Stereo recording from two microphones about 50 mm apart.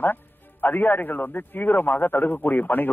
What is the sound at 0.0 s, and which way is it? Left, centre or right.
Speech, left.